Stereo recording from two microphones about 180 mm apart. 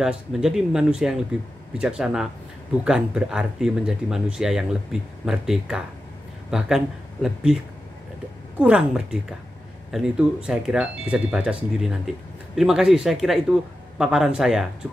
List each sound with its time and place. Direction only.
0.0 s speech: 5° right (ahead or behind)
8.5 s speech: 5° right (ahead or behind)
12.5 s speech: 5° right (ahead or behind)